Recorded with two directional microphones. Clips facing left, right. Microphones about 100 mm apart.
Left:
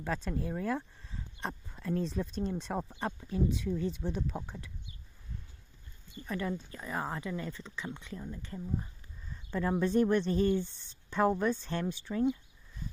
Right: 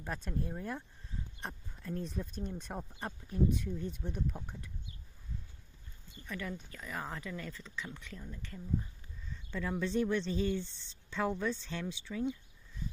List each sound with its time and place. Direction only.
0.0 s speech: 90° left
6.2 s speech: 35° left (ahead or behind)
9.3 s speech: 40° left (ahead or behind)